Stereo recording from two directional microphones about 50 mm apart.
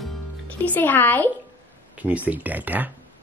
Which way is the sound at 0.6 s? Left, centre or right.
Left.